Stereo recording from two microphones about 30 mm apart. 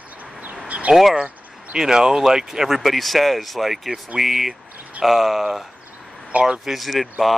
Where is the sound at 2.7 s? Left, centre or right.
Centre.